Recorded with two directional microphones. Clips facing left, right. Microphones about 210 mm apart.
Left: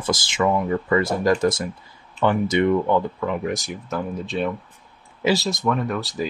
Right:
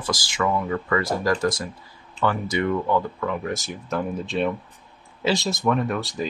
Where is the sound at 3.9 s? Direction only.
Centre (ahead or behind).